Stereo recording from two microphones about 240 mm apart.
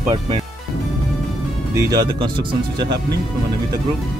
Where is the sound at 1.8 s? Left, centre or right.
Centre.